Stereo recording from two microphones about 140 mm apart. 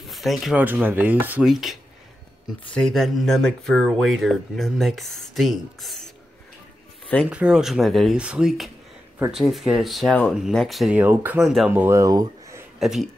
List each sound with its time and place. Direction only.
0.1 s speech: centre (ahead or behind)
0.6 s speech: 15° right (ahead or behind)
7.2 s speech: 5° right (ahead or behind)
11.0 s speech: 10° right (ahead or behind)
11.4 s speech: centre (ahead or behind)
11.7 s speech: 15° right (ahead or behind)
12.7 s speech: centre (ahead or behind)